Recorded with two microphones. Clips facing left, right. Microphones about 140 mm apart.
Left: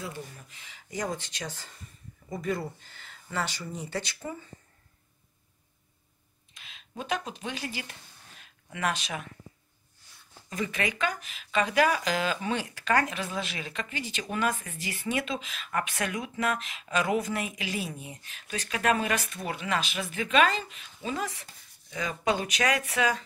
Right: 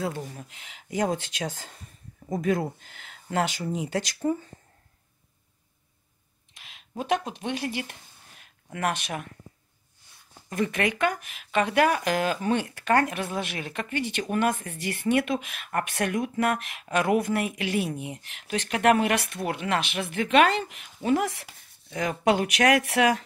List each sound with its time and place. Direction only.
0.1 s speech: 90° right
2.4 s speech: 90° right; by 3.7 s 60° right (ahead or behind)
7.0 s speech: 55° right (ahead or behind)
10.5 s speech: 60° right (ahead or behind)